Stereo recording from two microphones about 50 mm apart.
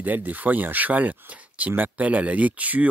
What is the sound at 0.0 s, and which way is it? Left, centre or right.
Speech, right.